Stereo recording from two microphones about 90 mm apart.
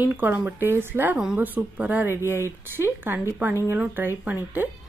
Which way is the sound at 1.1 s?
10° right (ahead or behind).